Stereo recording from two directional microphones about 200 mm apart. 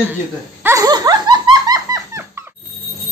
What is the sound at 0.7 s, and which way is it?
Dog, 15° right (ahead or behind).